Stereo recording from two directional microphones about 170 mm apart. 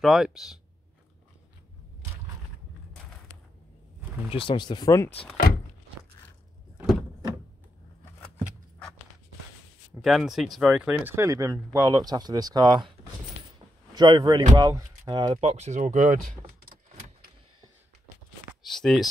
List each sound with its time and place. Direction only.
0.0 s speech: centre (ahead or behind)
4.3 s speech: 30° left (ahead or behind); by 5.3 s 10° left (ahead or behind)
10.0 s speech: centre (ahead or behind); by 12.9 s 25° right (ahead or behind)
13.9 s speech: 25° right (ahead or behind)
15.3 s speech: 40° right (ahead or behind)
18.5 s speech: centre (ahead or behind)